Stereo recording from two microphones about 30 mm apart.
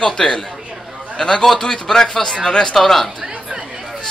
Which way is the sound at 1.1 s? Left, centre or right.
Left.